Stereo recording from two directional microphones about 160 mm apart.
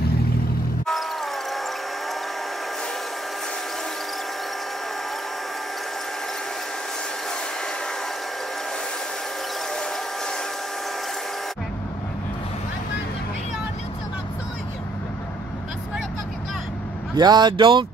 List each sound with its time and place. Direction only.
17.2 s speech: 25° right (ahead or behind)